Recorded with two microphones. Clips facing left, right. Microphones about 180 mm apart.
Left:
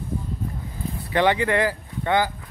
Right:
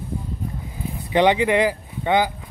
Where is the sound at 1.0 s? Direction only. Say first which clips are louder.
Right 3 dB; 20° right (ahead or behind).